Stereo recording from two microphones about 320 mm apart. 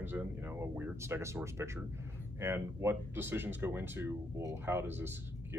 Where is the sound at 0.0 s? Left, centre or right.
Centre.